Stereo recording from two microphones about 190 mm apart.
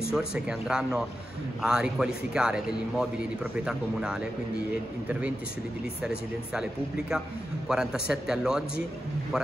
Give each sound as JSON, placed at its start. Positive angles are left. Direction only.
{"t": 0.1, "sound": "a man's voice", "side_deg": -5}
{"t": 6.0, "sound": "a man's voice", "side_deg": -5}